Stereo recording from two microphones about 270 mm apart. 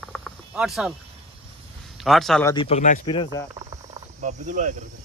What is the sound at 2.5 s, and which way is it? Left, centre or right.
Speech, left.